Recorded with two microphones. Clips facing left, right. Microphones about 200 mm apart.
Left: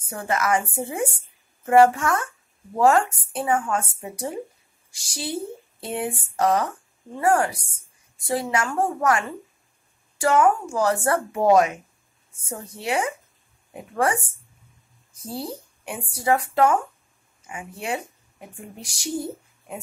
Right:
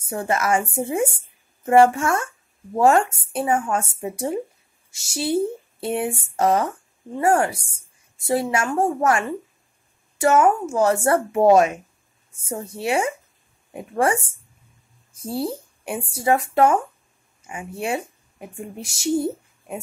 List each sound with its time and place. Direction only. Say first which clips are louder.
0.0 s speech: right 2 dB; 25° right (ahead or behind)
15.1 s speech: right 6 dB; 30° right (ahead or behind)